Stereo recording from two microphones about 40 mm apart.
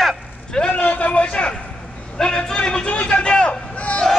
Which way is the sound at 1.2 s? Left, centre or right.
Left.